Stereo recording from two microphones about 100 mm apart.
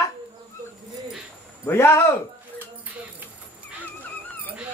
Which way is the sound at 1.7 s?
25° left (ahead or behind).